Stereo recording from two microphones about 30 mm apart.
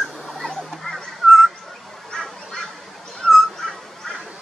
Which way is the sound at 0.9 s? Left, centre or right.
Left.